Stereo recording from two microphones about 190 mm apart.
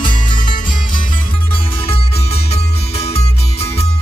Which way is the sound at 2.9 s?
30° left (ahead or behind).